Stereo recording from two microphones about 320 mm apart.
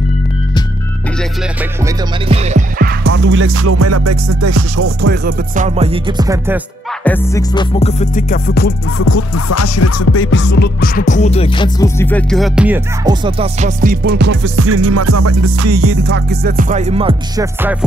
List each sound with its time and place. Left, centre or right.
2.2 s music: centre; by 4.8 s right
4.8 s music: right
5.8 s music: centre
7.1 s music: centre; by 8.7 s left
8.9 s music: left; by 17.7 s centre